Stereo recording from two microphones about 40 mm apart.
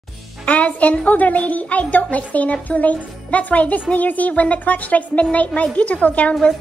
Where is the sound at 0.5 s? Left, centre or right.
Left.